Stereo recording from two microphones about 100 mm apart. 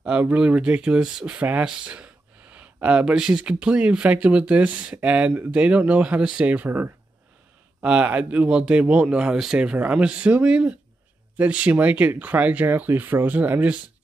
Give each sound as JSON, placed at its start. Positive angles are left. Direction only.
{"t": 0.0, "sound": "speech", "side_deg": -10}